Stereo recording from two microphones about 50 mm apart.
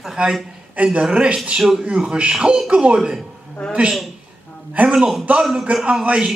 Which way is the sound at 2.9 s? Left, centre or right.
Centre.